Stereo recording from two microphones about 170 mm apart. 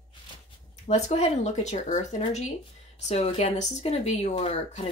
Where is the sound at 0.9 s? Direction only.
40° left (ahead or behind).